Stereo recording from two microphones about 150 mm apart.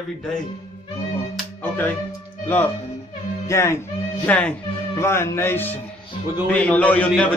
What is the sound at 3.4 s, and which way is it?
Speech, 20° left (ahead or behind).